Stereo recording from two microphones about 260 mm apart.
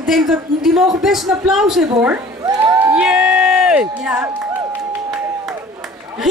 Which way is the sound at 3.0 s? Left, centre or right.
Centre.